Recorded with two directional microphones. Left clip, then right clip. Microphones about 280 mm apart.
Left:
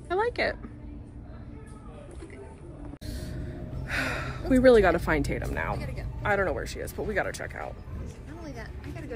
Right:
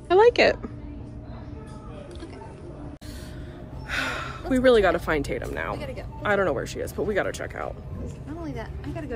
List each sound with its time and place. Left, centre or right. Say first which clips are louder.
0.1 s a woman's voice: right 10 dB; centre
3.8 s speech: right 2 dB; centre
8.4 s speech: right 6 dB; right